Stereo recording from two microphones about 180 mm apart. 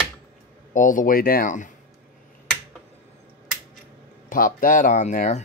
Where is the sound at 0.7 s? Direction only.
45° left (ahead or behind).